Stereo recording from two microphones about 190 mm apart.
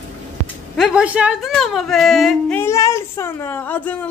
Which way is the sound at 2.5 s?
15° left (ahead or behind).